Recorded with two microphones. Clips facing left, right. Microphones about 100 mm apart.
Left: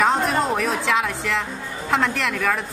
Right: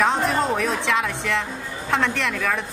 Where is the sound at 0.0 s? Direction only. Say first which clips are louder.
Left 1 dB; centre (ahead or behind).